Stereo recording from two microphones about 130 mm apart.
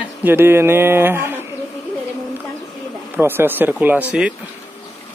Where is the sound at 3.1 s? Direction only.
15° right (ahead or behind).